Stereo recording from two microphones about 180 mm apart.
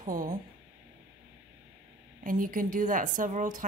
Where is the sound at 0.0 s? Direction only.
50° right (ahead or behind).